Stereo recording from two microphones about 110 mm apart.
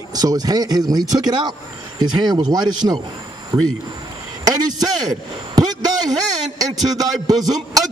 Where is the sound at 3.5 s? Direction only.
50° right (ahead or behind).